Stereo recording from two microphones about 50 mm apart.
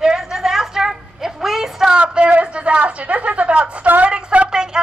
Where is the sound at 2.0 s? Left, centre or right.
Right.